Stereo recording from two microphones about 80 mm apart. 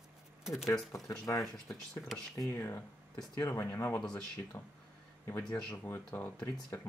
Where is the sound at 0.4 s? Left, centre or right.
Centre.